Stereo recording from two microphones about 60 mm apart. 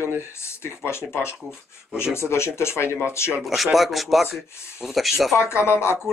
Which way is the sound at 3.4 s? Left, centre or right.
Centre.